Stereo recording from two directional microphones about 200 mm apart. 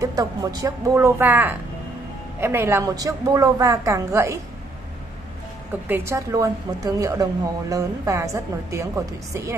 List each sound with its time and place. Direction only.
0.0 s a woman's voice: 15° right (ahead or behind)
5.9 s a woman's voice: 10° right (ahead or behind)